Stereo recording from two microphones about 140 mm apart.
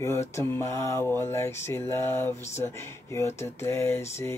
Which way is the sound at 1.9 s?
15° left (ahead or behind).